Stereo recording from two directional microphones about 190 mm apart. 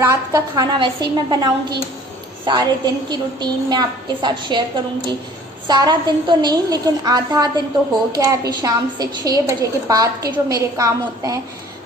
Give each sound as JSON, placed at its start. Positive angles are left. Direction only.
{"t": 0.0, "sound": "a woman's voice", "side_deg": -20}